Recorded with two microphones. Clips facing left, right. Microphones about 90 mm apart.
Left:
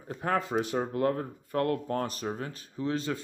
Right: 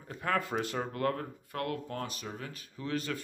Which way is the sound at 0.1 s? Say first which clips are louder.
Left 3 dB; 30° left (ahead or behind).